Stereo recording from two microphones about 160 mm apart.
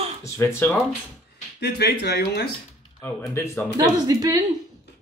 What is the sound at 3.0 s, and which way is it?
Speech, 15° left (ahead or behind).